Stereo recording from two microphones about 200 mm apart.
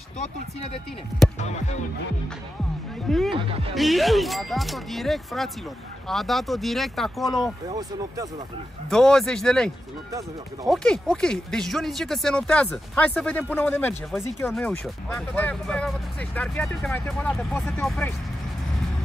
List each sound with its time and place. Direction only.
3.1 s speech: centre (ahead or behind)
3.3 s speech: 25° right (ahead or behind)
3.7 s speech: centre (ahead or behind)
7.6 s speech: 20° right (ahead or behind)
8.9 s speech: 5° left (ahead or behind)
10.7 s speech: 5° left (ahead or behind)